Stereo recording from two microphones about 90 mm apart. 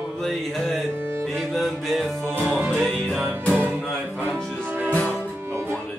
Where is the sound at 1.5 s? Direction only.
Centre (ahead or behind).